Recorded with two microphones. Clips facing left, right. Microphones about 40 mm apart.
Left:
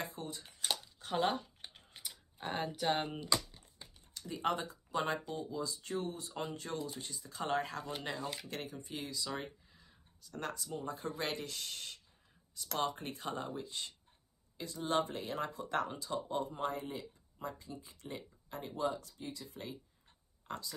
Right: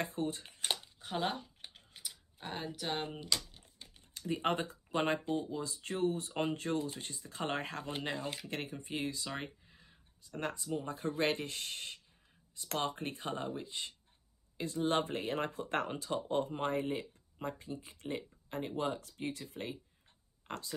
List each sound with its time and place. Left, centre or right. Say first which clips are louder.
0.0 s speech: right 6 dB; right
0.9 s typing: left 6 dB; centre
4.3 s speech: right 2 dB; right
10.4 s speech: right 3 dB; right
14.6 s speech: right 2 dB; right
20.5 s a sound: even; right